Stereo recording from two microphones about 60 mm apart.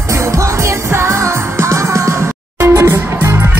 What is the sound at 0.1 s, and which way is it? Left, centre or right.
Music, right.